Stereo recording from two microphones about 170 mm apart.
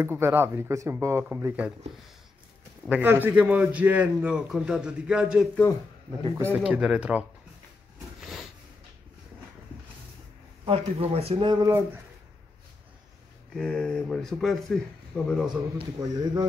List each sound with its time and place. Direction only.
0.0 s a man's voice: 15° right (ahead or behind)
2.9 s a man's voice: 10° right (ahead or behind)
6.5 s speech: 5° right (ahead or behind)
8.2 s a sound: centre (ahead or behind)
10.6 s speech: 35° right (ahead or behind)
13.6 s speech: 5° left (ahead or behind)
16.0 s a man's voice: 20° right (ahead or behind)